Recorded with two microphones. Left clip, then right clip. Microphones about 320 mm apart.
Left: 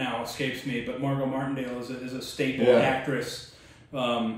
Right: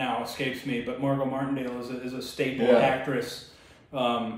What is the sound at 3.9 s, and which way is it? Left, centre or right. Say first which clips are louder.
Speech: right 2 dB; centre.